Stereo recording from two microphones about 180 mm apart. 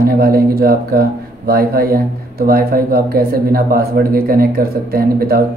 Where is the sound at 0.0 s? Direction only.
55° right (ahead or behind).